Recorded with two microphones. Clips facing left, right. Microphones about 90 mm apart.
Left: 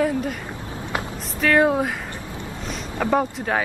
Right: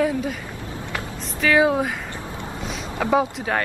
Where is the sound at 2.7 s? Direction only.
Centre (ahead or behind).